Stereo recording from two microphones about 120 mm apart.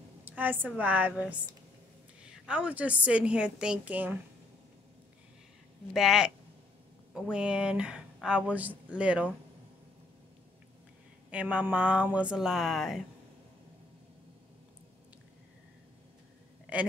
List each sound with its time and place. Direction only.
0.2 s a woman's voice: 15° right (ahead or behind)
5.9 s a woman's voice: 5° right (ahead or behind)
11.2 s a woman's voice: 10° right (ahead or behind)
16.7 s a man's voice: 10° right (ahead or behind)